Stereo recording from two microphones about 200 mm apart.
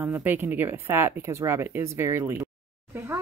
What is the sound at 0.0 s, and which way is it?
Speech, 10° right (ahead or behind).